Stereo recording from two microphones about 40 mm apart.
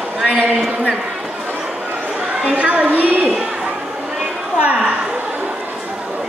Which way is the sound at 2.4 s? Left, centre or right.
Right.